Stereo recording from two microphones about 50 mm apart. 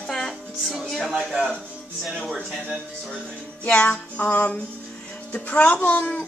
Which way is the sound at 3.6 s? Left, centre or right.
Left.